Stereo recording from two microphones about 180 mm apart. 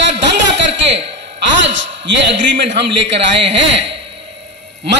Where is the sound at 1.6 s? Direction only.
85° right.